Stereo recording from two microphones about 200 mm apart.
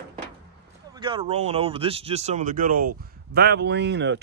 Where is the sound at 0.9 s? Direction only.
25° right (ahead or behind).